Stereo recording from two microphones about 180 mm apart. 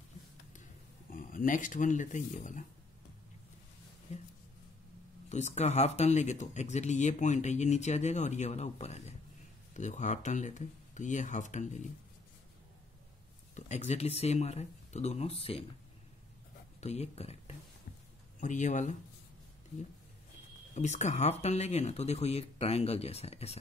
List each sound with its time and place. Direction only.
1.1 s speech: 50° left (ahead or behind)
5.3 s speech: 40° left (ahead or behind)
13.6 s speech: 40° left (ahead or behind)
16.8 s speech: 35° left (ahead or behind)
20.7 s speech: 40° left (ahead or behind)